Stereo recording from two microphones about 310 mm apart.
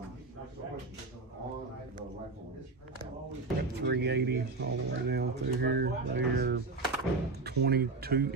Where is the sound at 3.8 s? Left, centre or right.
Right.